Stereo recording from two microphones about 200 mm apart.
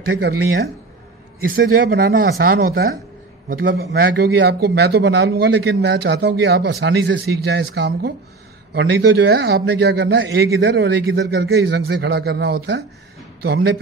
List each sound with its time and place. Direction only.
1.5 s a man's voice: 50° right (ahead or behind)